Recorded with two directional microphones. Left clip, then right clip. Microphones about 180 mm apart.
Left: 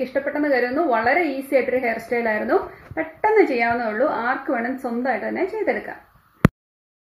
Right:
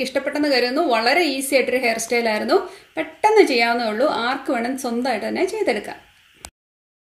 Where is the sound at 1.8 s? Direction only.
35° right (ahead or behind).